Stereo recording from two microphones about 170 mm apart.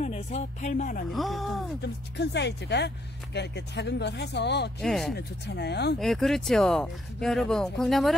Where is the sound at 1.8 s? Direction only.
80° left.